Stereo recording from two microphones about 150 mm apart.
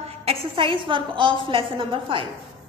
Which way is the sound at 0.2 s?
40° right (ahead or behind).